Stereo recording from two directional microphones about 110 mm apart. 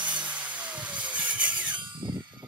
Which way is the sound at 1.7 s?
45° right (ahead or behind).